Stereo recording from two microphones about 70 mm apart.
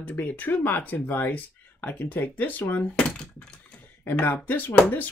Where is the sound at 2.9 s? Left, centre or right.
Centre.